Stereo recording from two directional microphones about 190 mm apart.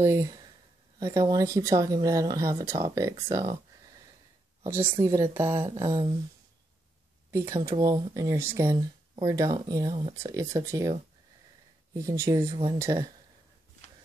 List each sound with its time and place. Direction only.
0.0 s speech: 15° right (ahead or behind)
4.6 s speech: 10° right (ahead or behind)
7.2 s speech: 15° right (ahead or behind)